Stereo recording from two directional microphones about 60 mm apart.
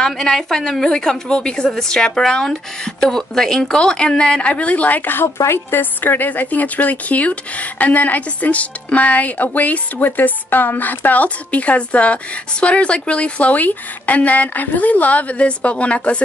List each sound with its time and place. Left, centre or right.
0.0 s a woman's voice: centre